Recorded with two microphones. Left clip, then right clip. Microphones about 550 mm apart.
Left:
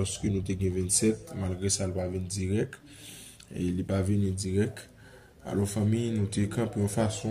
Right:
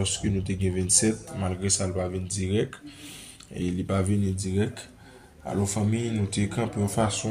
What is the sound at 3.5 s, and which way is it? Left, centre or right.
Speech, left.